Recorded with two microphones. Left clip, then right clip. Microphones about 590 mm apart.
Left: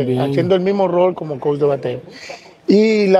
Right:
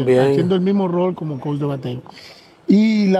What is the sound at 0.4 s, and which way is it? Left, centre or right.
A man's voice, left.